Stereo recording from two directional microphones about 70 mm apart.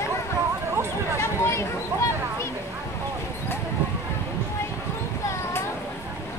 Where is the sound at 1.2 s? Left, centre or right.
Left.